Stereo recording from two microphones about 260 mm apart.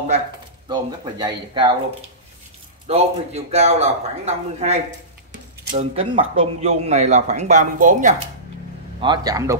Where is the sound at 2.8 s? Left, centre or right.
Right.